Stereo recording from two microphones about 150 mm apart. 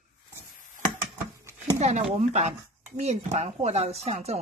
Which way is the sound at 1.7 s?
50° right (ahead or behind).